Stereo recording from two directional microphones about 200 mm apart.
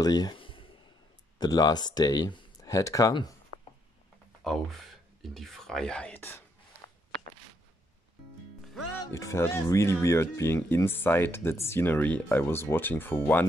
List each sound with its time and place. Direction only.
0.0 s a sound: 20° left (ahead or behind)
1.4 s speech: 20° left (ahead or behind)
4.4 s speech: centre (ahead or behind)
9.0 s speech: 15° left (ahead or behind)